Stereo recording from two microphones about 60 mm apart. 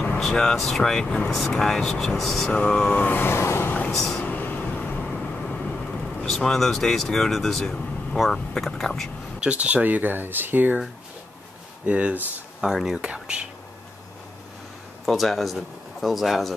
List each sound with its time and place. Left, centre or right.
0.2 s speech: centre
2.9 s vehicle: left
4.2 s vehicle: left
5.0 s vehicle: centre
6.2 s speech: centre
9.4 s speech: right
11.8 s speech: right
12.7 s speech: centre
13.1 s speech: centre
15.0 s speech: centre